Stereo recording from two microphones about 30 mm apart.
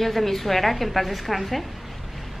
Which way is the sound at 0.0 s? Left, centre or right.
Centre.